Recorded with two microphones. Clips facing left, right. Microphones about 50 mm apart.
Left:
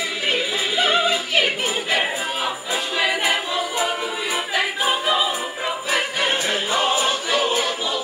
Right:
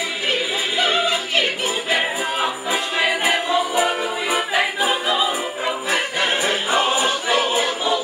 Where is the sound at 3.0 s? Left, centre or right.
Centre.